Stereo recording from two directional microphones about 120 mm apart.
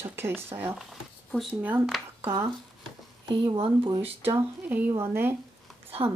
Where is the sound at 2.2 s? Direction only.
20° right (ahead or behind).